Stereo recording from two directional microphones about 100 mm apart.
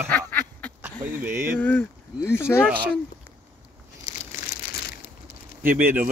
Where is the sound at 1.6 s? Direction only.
20° left (ahead or behind).